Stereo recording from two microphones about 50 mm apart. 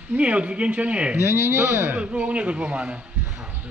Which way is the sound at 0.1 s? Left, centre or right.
Right.